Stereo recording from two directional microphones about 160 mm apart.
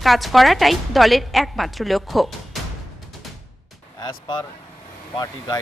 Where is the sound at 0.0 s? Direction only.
Centre (ahead or behind).